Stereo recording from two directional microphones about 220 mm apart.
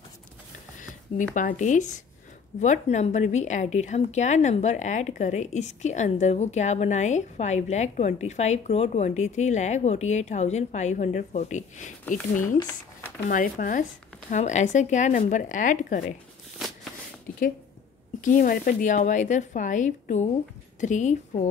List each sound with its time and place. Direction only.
0.7 s a sound: 35° left (ahead or behind)
1.3 s a woman's voice: 35° left (ahead or behind)
13.3 s a woman's voice: 35° left (ahead or behind)
18.2 s a woman's voice: 35° left (ahead or behind)